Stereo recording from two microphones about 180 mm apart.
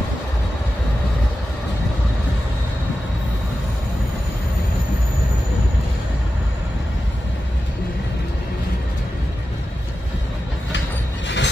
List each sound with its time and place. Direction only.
11.2 s mechanisms: 80° left